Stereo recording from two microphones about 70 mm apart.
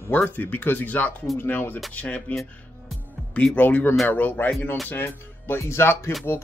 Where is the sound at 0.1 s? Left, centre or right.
Left.